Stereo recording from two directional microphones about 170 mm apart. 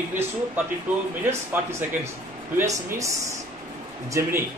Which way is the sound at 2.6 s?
15° right (ahead or behind).